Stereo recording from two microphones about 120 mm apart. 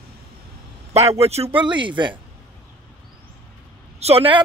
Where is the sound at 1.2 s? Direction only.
55° right (ahead or behind).